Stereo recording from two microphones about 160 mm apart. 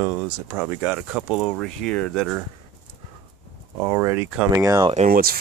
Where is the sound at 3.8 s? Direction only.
15° right (ahead or behind).